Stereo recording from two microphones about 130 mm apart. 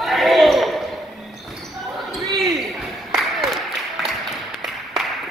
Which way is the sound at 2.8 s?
Centre (ahead or behind).